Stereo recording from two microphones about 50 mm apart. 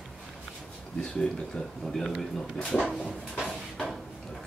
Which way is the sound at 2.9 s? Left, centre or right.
Centre.